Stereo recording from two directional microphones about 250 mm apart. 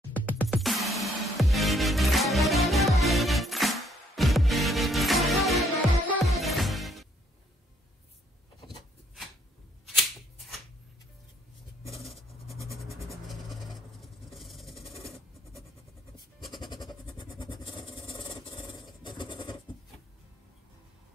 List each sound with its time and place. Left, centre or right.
0.3 s music: centre
9.8 s shuffling cards: centre
12.0 s a sound: centre
16.8 s vehicle: centre